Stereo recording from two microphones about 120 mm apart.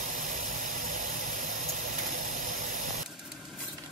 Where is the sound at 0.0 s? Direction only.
90° right.